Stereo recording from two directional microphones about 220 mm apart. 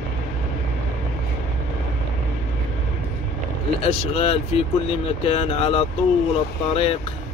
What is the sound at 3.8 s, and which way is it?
Speech, 25° left (ahead or behind).